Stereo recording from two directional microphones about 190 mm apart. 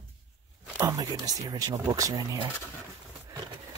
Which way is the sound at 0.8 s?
15° right (ahead or behind).